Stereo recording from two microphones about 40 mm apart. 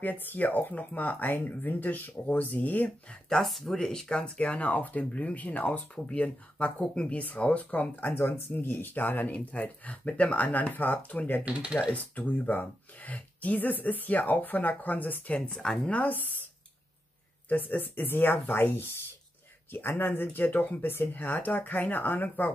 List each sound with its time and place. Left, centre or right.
0.0 s speech: left
3.3 s speech: centre
4.4 s speech: left
6.1 s speech: left
8.2 s speech: left
9.5 s speech: left
11.6 s speech: centre
11.9 s speech: left
15.2 s speech: left
17.5 s speech: left